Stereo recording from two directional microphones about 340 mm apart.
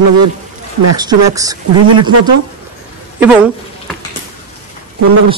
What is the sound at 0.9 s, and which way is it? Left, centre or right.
Speech, centre.